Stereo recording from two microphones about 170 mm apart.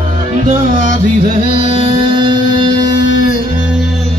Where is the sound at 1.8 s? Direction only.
25° right (ahead or behind).